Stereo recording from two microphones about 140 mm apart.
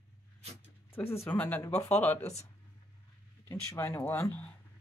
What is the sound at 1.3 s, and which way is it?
Speech, 10° left (ahead or behind).